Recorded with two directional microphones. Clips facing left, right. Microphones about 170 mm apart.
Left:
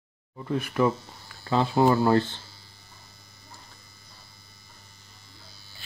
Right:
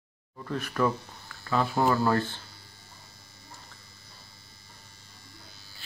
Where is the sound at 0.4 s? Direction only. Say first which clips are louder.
Left 3 dB; 15° left (ahead or behind).